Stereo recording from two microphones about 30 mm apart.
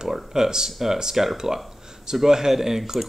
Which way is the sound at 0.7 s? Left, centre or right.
Centre.